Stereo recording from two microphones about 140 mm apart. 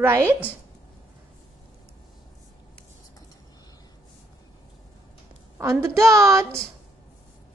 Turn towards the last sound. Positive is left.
turn(degrees=-20)  # may be behind; listen again after turning